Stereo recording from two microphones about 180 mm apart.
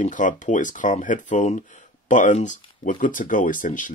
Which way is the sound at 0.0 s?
45° left (ahead or behind).